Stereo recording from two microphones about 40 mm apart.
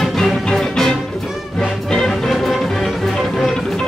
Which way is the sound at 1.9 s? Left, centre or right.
Centre.